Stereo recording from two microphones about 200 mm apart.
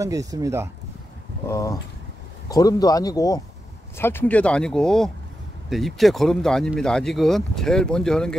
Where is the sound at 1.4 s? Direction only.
15° left (ahead or behind).